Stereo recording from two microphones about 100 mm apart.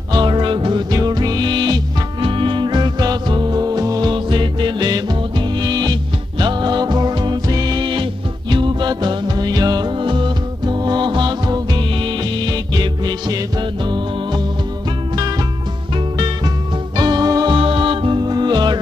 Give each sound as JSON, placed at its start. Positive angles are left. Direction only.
{"t": 0.1, "sound": "music", "side_deg": -50}
{"t": 2.2, "sound": "music", "side_deg": -60}
{"t": 4.1, "sound": "music", "side_deg": -50}
{"t": 16.9, "sound": "music", "side_deg": -45}
{"t": 17.6, "sound": "music", "side_deg": -60}